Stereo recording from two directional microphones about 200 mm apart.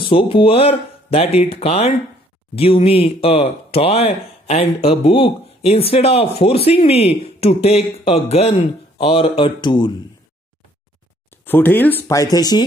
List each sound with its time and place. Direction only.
0.0 s speech: 25° left (ahead or behind)
11.4 s speech: 10° left (ahead or behind)